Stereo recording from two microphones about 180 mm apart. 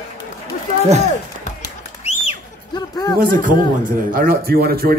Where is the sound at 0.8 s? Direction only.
40° right (ahead or behind).